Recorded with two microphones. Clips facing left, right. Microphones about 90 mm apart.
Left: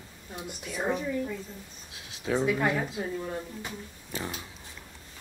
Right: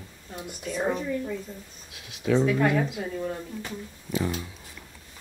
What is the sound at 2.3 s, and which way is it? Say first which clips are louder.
Speech: right 5 dB; 30° left (ahead or behind).